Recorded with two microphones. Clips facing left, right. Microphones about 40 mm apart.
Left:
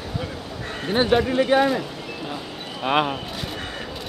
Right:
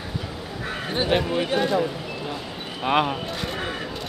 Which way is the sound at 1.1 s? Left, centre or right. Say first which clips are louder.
Left 3 dB; centre.